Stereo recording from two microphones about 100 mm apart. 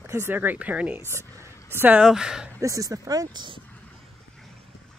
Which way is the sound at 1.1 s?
25° right (ahead or behind).